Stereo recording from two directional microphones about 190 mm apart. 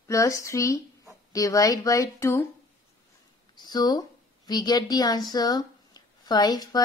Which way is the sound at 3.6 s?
20° left (ahead or behind).